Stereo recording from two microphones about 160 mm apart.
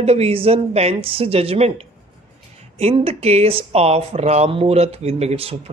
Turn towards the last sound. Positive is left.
turn(degrees=-40)  # may be behind; listen again after turning